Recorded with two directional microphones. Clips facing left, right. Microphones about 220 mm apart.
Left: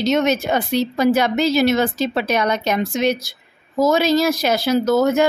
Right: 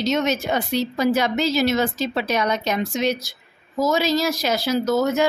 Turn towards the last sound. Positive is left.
turn(degrees=55)  # may be behind; listen again after turning